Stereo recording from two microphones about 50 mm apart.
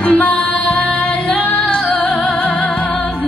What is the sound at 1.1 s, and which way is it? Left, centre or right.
Music, left.